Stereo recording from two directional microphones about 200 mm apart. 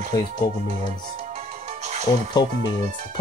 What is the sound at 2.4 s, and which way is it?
Speech, 20° left (ahead or behind).